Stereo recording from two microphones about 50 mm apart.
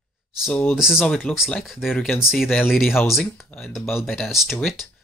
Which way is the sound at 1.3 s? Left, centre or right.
Left.